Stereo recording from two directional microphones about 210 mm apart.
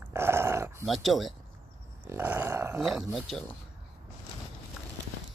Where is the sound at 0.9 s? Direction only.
Centre (ahead or behind).